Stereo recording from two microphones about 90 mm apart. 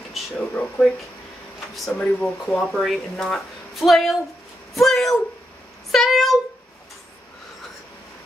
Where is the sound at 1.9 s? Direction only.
15° left (ahead or behind).